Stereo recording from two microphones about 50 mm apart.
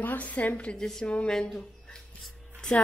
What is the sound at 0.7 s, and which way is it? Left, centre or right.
Speech, centre.